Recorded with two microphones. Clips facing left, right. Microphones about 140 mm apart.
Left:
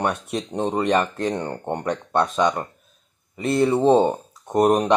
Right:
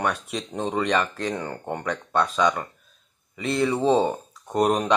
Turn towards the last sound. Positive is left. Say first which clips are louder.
# left 4 dB
turn(degrees=25)  # may be behind; listen again after turning